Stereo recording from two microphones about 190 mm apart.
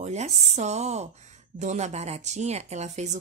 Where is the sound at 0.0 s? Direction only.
35° right (ahead or behind).